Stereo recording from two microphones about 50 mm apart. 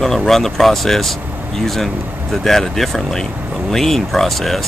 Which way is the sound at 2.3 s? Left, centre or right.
Centre.